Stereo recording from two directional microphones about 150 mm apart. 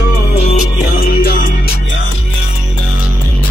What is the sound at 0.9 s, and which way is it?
Music, 80° left.